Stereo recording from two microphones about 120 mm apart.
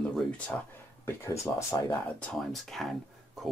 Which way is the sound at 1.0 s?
20° left (ahead or behind).